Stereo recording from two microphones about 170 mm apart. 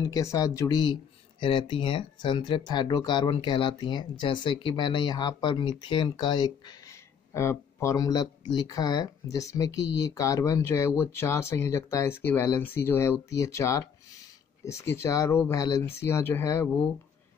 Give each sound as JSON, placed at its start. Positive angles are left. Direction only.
{"t": 0.0, "sound": "speech", "side_deg": 20}